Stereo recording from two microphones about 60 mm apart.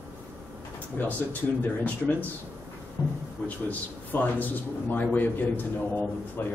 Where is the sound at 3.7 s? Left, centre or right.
Left.